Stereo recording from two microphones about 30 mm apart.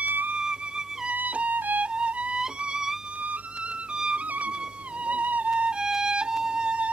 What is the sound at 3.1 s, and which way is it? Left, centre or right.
Music, right.